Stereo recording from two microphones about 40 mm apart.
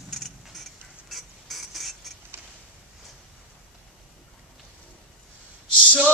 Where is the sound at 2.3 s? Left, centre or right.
Right.